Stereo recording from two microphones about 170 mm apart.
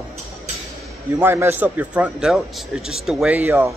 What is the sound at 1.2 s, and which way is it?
Speech, 15° right (ahead or behind).